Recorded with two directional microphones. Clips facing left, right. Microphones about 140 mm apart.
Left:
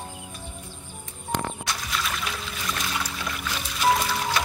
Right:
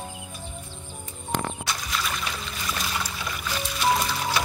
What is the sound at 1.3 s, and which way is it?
Music, 5° right (ahead or behind).